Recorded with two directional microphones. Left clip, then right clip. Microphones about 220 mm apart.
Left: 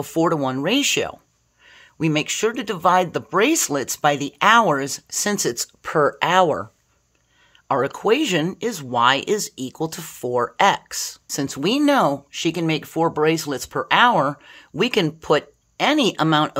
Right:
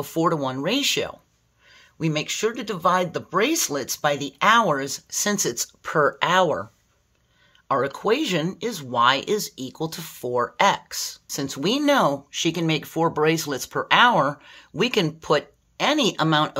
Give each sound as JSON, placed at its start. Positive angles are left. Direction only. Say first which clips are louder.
{"t": 0.0, "sound": "speech", "louder": "left 3 dB", "side_deg": 25}